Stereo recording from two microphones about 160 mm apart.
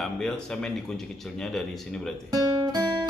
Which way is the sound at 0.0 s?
5° left (ahead or behind).